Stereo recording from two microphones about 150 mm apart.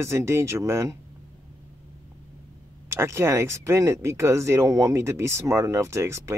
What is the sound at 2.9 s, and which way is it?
Speech, 15° right (ahead or behind).